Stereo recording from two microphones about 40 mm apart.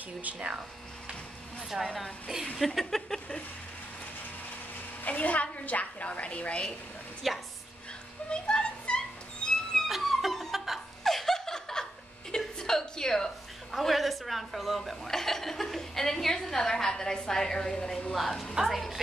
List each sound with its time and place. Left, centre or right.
0.2 s speech: right
2.5 s a woman's voice: centre
5.0 s a woman's voice: left
7.2 s a woman's voice: centre
8.3 s a sound: left
9.4 s cat: left
9.8 s music: centre
11.1 s laughter: centre
12.5 s a sound: centre
13.7 s a woman's voice: centre
15.0 s a woman's voice: centre
18.1 s a woman's voice: centre
18.5 s a woman's voice: centre